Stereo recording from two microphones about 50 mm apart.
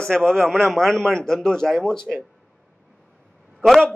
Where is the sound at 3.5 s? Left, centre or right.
Centre.